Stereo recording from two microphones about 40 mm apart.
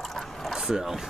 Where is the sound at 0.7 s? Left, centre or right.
Centre.